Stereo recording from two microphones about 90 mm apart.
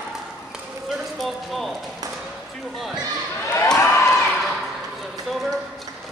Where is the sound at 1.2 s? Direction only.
Centre (ahead or behind).